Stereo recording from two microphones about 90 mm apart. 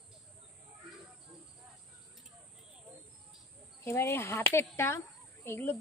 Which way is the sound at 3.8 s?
30° left (ahead or behind).